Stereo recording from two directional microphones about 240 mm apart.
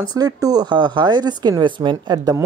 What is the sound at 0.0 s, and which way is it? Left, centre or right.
Speech, centre.